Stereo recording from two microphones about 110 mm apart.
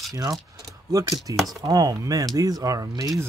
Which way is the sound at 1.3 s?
Centre (ahead or behind).